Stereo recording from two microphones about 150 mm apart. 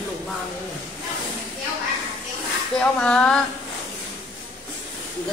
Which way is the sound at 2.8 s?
5° left (ahead or behind).